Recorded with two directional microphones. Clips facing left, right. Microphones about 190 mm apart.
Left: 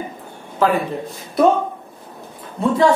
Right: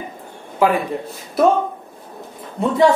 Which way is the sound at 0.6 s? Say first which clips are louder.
Right 1 dB; 10° right (ahead or behind).